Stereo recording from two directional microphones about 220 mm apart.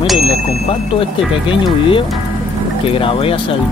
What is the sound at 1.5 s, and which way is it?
Speech, 25° left (ahead or behind).